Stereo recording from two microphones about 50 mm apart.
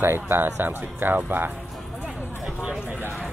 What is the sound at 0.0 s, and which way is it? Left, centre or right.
Speech, right.